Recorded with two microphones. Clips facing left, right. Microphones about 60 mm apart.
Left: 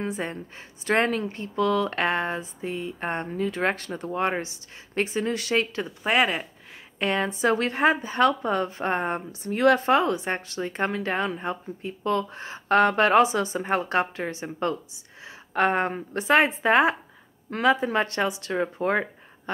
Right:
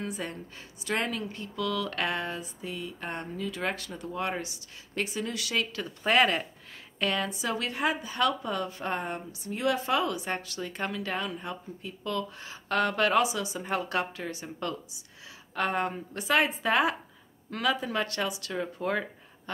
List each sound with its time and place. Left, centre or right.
0.0 s speech: left
0.8 s speech: left
5.9 s speech: centre
7.0 s speech: left
9.5 s speech: left
9.8 s speech: left